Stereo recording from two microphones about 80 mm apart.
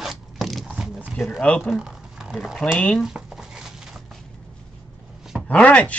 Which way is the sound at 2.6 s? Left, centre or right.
Centre.